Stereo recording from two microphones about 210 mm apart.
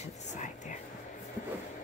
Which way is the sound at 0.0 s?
35° left (ahead or behind).